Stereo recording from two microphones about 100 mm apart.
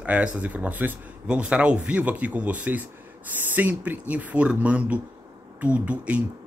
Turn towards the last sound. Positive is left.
turn(degrees=-15)  # may be behind; listen again after turning